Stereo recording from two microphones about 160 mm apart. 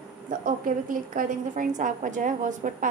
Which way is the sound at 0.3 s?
55° right (ahead or behind).